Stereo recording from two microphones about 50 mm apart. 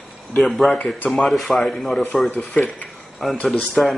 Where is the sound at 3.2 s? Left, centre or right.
Centre.